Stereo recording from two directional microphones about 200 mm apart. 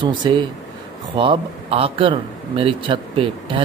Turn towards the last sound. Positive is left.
turn(degrees=-25)  # may be behind; listen again after turning